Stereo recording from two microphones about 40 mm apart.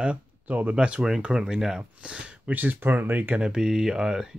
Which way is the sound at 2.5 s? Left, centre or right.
Right.